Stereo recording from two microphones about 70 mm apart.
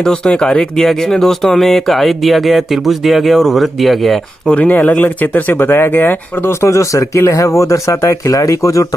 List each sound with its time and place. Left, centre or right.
0.0 s speech: centre
4.5 s speech: left